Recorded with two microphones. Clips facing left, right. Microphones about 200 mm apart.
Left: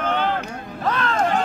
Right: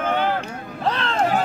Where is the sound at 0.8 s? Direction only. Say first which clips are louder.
Left 1 dB; 30° right (ahead or behind).